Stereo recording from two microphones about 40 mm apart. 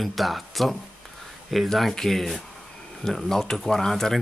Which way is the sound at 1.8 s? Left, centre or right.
Centre.